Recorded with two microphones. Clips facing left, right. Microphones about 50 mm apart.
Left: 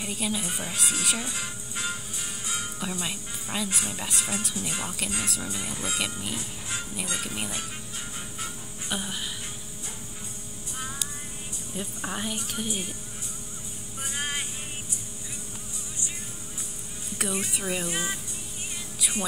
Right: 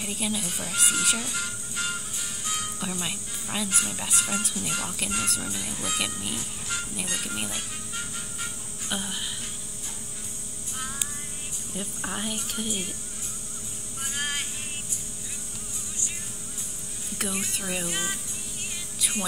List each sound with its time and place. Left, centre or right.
0.0 s speech: centre
0.5 s music: centre
0.7 s speech: centre
2.8 s speech: centre
5.6 s music: centre
5.9 s speech: centre
8.4 s insect: centre
11.7 s speech: centre
14.0 s music: centre
17.2 s speech: centre